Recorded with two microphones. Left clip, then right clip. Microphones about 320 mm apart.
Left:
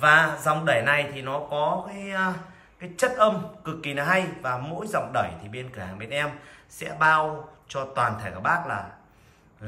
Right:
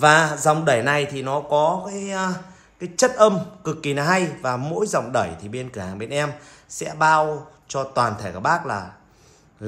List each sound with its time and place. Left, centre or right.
0.0 s a man's voice: centre